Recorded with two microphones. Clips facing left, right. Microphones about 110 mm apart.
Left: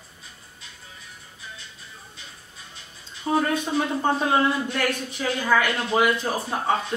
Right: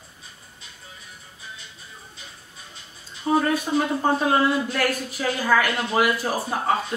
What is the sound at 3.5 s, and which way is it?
Speech, 5° right (ahead or behind).